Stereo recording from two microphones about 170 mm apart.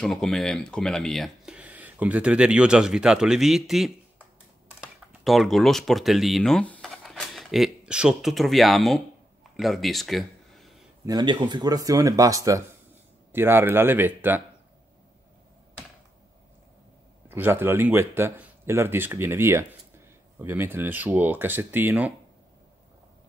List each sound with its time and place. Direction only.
0.0 s speech: centre (ahead or behind)
6.9 s a sound: centre (ahead or behind)
11.1 s speech: 25° right (ahead or behind)
17.3 s speech: 10° right (ahead or behind)